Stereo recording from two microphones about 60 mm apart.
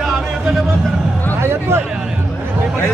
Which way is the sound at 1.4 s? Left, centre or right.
Right.